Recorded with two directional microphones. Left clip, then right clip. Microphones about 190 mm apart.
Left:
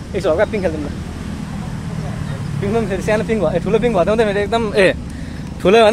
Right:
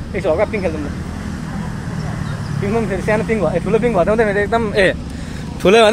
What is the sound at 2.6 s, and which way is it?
Speech, 15° left (ahead or behind).